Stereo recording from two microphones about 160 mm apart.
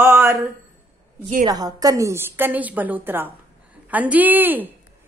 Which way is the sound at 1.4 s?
25° right (ahead or behind).